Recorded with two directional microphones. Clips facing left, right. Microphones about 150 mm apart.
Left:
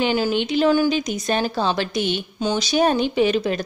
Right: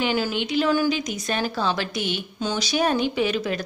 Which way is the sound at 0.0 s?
25° left (ahead or behind).